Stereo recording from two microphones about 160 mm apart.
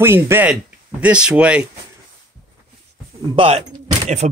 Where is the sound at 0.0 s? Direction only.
15° right (ahead or behind).